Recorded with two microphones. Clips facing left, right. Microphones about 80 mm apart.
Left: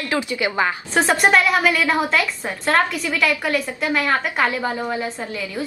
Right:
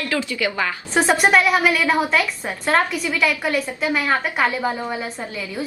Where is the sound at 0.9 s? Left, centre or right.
Centre.